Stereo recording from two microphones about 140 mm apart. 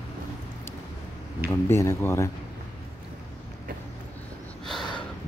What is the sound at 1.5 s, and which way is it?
Speech, 20° left (ahead or behind).